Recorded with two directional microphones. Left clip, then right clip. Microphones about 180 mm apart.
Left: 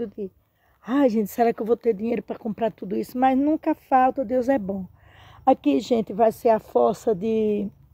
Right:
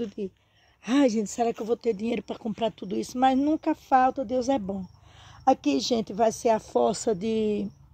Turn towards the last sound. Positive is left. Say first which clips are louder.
# left 4 dB
turn(degrees=0)  # may be behind; listen again after turning